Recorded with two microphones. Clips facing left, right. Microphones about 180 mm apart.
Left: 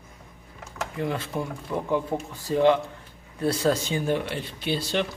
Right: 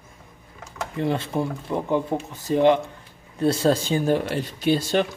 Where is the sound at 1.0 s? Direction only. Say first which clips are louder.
Right 5 dB; 25° right (ahead or behind); by 5.0 s 45° right (ahead or behind).